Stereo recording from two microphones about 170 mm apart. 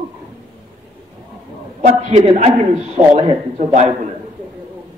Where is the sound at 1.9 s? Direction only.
40° right (ahead or behind).